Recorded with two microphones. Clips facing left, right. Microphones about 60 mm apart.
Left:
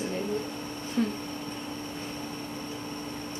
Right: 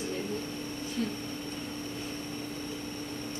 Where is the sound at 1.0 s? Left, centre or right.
Left.